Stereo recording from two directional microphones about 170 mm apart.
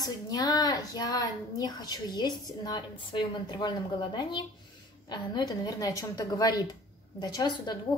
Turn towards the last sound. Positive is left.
turn(degrees=25)  # may be behind; listen again after turning